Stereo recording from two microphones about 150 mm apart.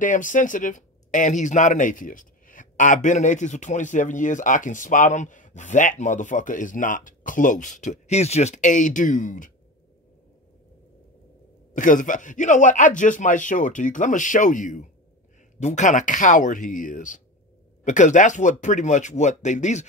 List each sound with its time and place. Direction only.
0.0 s speech: 60° left (ahead or behind)
11.7 s speech: 60° left (ahead or behind)